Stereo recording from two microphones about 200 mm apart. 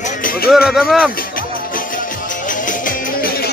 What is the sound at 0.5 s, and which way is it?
Speech, 5° right (ahead or behind).